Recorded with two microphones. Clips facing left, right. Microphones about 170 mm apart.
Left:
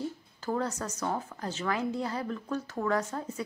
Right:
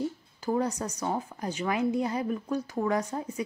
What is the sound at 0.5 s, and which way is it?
A woman's voice, 15° right (ahead or behind).